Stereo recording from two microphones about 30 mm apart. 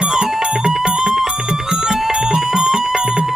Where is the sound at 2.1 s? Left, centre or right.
Right.